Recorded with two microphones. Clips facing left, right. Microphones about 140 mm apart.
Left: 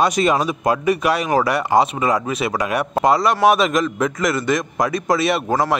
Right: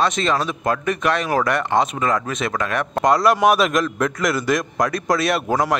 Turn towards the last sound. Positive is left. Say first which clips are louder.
# left 1 dB
turn(degrees=0)  # may be behind; listen again after turning